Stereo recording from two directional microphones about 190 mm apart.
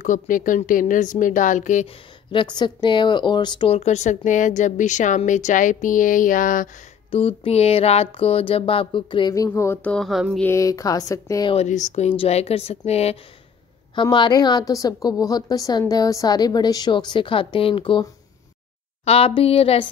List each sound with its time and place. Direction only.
0.0 s speech: 45° left (ahead or behind)
2.3 s speech: 25° left (ahead or behind); by 6.7 s 45° left (ahead or behind)
7.1 s a sound: 30° left (ahead or behind); by 10.4 s centre (ahead or behind)
10.4 s speech: 15° left (ahead or behind)
11.5 s speech: 40° left (ahead or behind)
13.9 s a sound: 25° left (ahead or behind)
19.0 s speech: 30° left (ahead or behind)